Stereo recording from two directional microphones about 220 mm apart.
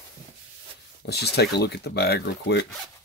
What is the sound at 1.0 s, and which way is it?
Speech, 50° left (ahead or behind).